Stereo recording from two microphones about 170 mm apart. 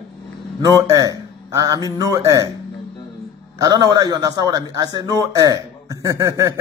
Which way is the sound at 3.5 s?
20° right (ahead or behind).